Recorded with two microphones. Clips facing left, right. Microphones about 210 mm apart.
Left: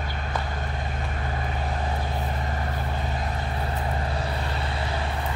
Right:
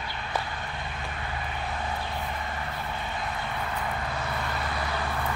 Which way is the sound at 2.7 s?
40° left (ahead or behind).